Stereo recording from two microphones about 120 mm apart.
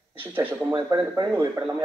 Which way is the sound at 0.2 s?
15° right (ahead or behind).